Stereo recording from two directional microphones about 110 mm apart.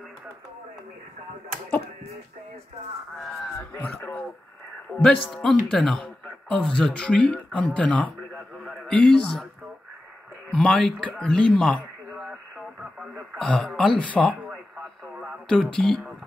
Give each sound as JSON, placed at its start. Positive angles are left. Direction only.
{"t": 3.2, "sound": "speech", "side_deg": 5}
{"t": 3.5, "sound": "a man's voice", "side_deg": 15}
{"t": 10.5, "sound": "speech", "side_deg": 5}
{"t": 12.1, "sound": "radio", "side_deg": -5}
{"t": 13.4, "sound": "speech", "side_deg": 5}
{"t": 15.4, "sound": "speech", "side_deg": 10}